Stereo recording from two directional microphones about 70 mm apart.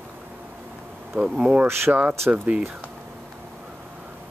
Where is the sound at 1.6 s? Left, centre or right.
Right.